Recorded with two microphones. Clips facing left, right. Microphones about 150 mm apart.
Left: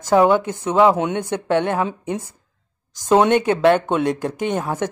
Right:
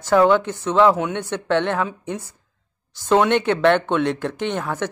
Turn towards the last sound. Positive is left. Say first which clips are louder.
# left 2 dB
turn(degrees=15)  # may be behind; listen again after turning